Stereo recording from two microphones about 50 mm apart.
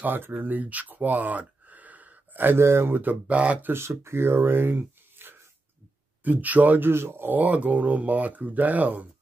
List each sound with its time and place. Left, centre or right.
0.0 s speech: right
2.6 s speech: right
2.9 s speech: right
3.6 s speech: right
6.2 s speech: right
6.9 s speech: right
7.3 s speech: right